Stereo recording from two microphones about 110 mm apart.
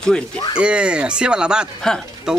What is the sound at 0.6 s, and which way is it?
Speech, 10° right (ahead or behind).